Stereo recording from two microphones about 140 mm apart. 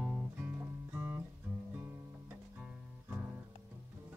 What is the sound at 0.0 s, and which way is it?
Music, 10° right (ahead or behind).